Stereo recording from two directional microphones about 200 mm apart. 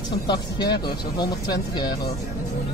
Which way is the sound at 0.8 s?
20° left (ahead or behind).